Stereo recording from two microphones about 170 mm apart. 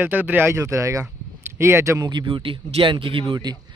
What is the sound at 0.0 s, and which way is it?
Speech, 10° right (ahead or behind).